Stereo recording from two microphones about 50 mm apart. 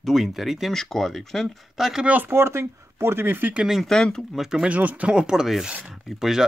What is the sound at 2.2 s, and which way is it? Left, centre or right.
Speech, right.